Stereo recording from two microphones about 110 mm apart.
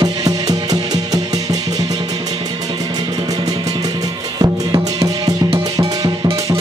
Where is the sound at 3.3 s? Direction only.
35° right (ahead or behind).